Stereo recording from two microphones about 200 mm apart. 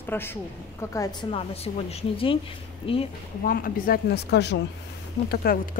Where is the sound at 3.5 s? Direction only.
45° left (ahead or behind).